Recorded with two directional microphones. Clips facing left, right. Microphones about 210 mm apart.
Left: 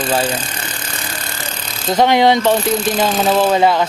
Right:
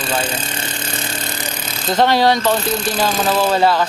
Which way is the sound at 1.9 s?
15° left (ahead or behind).